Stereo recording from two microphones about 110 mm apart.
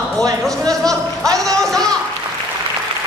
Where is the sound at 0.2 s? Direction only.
5° left (ahead or behind).